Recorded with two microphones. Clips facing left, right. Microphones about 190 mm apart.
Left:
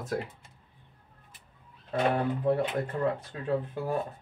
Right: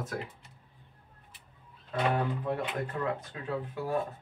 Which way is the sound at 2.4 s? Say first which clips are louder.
Left 6 dB; 35° left (ahead or behind).